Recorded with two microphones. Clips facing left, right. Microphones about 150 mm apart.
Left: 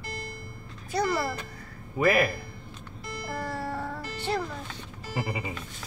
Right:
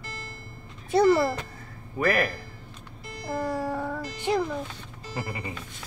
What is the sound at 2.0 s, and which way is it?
Speech, 5° left (ahead or behind).